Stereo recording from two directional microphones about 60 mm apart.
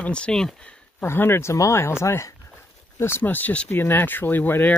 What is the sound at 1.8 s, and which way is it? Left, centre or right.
Speech, left.